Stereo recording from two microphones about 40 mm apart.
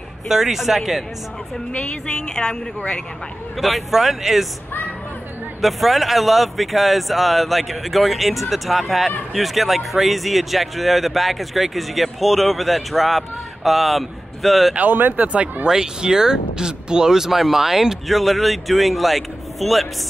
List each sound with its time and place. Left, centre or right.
0.3 s speech: centre
2.1 s speech: centre
3.5 s speech: centre
5.6 s speech: centre
14.8 s speech: right
15.2 s speech: right
15.6 s speech: centre